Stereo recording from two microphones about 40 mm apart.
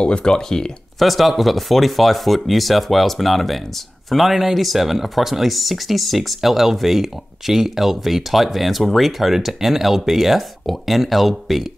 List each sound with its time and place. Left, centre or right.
0.0 s speech: left
0.9 s speech: centre